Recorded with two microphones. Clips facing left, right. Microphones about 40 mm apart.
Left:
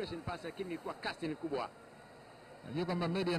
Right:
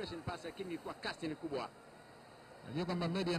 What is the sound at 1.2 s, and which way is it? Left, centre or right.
Speech, centre.